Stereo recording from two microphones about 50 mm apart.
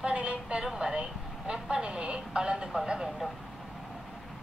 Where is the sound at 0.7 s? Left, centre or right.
Centre.